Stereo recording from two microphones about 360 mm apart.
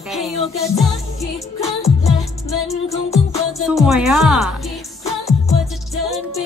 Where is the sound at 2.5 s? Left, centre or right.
Centre.